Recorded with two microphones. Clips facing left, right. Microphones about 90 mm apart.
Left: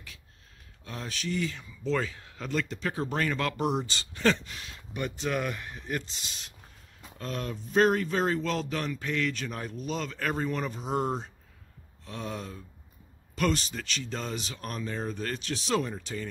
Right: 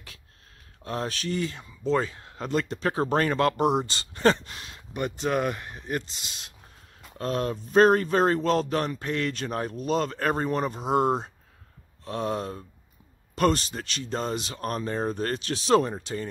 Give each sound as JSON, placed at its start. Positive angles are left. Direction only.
{"t": 0.8, "sound": "speech", "side_deg": -50}
{"t": 1.6, "sound": "speech", "side_deg": -30}
{"t": 5.0, "sound": "speech", "side_deg": -25}
{"t": 7.2, "sound": "speech", "side_deg": -50}
{"t": 10.8, "sound": "speech", "side_deg": -65}
{"t": 13.7, "sound": "speech", "side_deg": -40}
{"t": 15.3, "sound": "speech", "side_deg": -60}